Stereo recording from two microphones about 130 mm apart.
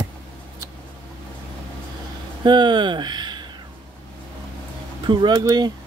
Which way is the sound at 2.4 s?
35° right (ahead or behind).